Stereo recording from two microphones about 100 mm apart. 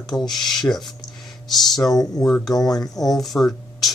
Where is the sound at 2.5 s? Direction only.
40° left (ahead or behind).